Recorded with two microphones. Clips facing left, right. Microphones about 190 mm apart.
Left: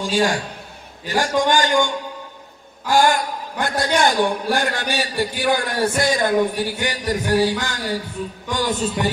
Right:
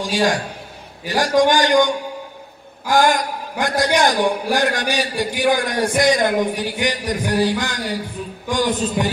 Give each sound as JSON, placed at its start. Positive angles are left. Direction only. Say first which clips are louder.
{"t": 0.0, "sound": "a man's voice", "louder": "right 1 dB", "side_deg": -15}
{"t": 2.9, "sound": "a man's voice", "louder": "right 1 dB", "side_deg": -15}